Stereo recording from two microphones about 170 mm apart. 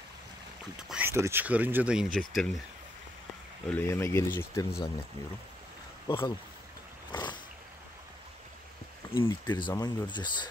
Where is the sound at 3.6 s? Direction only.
10° left (ahead or behind).